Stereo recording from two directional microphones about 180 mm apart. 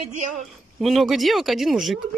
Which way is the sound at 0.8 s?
Centre (ahead or behind).